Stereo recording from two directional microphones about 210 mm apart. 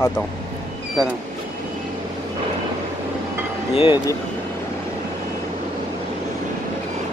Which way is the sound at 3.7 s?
25° left (ahead or behind).